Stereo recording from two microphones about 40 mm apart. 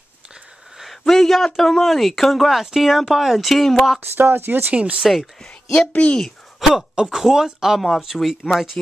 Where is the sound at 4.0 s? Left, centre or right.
Right.